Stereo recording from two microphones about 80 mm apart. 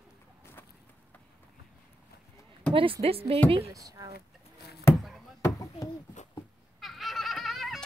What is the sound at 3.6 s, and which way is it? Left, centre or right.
Speech, right.